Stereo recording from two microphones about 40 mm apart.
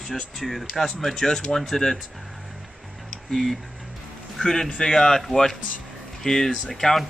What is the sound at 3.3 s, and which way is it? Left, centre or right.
Speech, centre.